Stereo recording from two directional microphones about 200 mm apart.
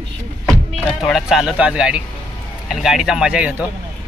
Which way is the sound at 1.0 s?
Centre (ahead or behind).